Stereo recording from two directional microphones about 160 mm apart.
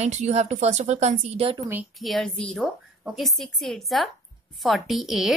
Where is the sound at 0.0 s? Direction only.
45° right (ahead or behind).